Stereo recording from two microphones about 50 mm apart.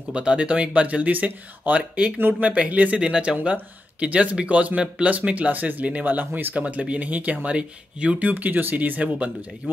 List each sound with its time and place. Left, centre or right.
0.1 s speech: centre
2.1 s speech: right
2.5 s speech: right